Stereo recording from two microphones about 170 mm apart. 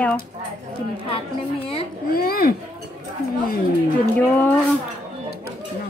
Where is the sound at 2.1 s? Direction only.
60° left (ahead or behind).